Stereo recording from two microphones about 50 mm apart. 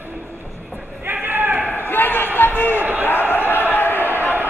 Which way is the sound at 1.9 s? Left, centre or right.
Left.